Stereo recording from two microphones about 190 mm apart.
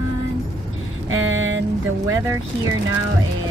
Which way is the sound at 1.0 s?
90° right.